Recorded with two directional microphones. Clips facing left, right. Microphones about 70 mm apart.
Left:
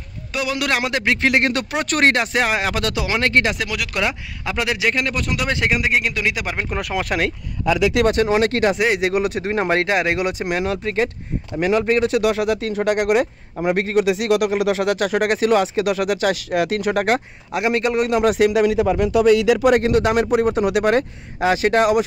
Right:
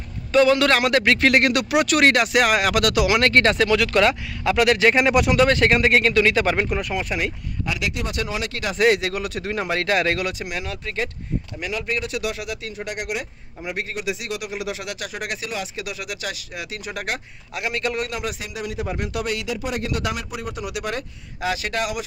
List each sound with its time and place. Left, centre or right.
0.3 s speech: centre
1.9 s speech: left; by 4.8 s centre
4.9 s speech: centre
5.7 s speech: centre
6.8 s speech: left
8.1 s a man's voice: left
8.7 s speech: centre
11.5 s a man's voice: left
12.7 s a man's voice: left
16.5 s a man's voice: left
17.5 s speech: left
18.2 s speech: left
19.8 s a man's voice: left